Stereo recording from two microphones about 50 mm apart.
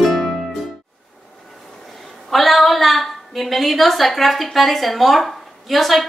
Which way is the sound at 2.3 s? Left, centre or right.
Centre.